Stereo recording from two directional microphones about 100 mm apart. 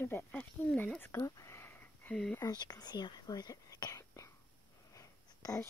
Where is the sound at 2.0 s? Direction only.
10° left (ahead or behind).